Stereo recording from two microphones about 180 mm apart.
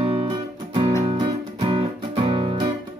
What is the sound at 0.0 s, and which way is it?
Music, 30° right (ahead or behind).